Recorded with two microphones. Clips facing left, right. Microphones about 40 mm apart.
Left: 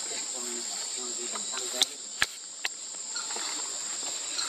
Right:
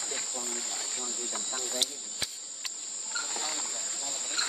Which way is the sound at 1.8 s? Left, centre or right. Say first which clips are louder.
Left 5 dB; left.